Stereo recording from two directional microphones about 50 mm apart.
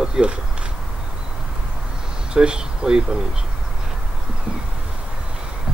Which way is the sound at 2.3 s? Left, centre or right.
Centre.